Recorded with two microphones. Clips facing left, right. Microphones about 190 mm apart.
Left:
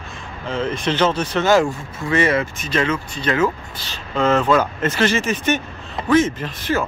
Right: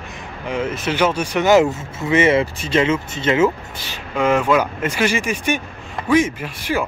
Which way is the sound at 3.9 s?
15° right (ahead or behind).